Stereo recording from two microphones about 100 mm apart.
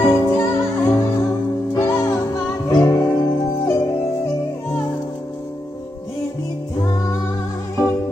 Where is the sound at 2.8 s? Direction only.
40° left (ahead or behind).